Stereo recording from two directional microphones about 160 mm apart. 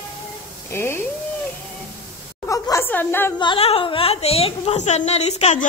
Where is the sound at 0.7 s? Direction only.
15° left (ahead or behind).